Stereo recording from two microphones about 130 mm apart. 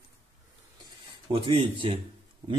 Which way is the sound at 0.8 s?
40° right (ahead or behind).